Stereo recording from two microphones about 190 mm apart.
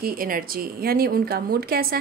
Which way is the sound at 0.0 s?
50° right (ahead or behind).